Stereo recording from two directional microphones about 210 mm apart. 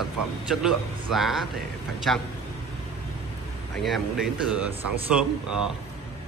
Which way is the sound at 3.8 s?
Centre (ahead or behind).